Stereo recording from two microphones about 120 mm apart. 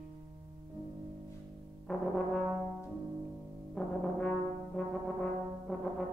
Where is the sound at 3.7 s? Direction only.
5° left (ahead or behind).